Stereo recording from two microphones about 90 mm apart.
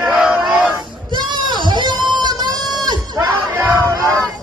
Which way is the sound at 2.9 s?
45° right (ahead or behind).